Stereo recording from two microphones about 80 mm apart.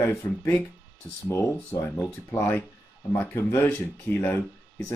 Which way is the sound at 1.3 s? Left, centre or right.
Left.